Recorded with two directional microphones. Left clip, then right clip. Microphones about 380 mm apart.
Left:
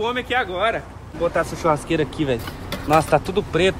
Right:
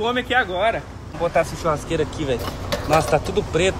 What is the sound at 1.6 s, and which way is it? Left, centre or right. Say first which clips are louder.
Speech: left 2 dB; centre.